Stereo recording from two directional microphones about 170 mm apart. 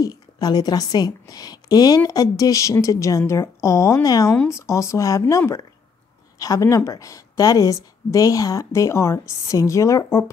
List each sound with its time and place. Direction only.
0.0 s a woman's voice: 25° left (ahead or behind)